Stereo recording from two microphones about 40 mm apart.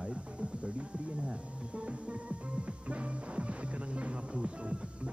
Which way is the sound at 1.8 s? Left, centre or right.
Right.